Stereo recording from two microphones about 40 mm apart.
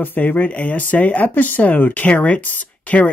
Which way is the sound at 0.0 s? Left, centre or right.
Left.